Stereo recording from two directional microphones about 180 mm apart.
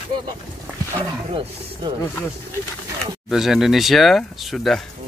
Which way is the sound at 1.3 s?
30° right (ahead or behind).